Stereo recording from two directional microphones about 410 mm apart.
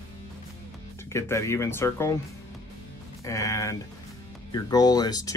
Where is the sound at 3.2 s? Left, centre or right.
Centre.